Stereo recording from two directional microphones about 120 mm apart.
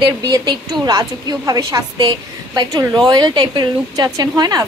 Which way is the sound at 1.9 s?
40° right (ahead or behind).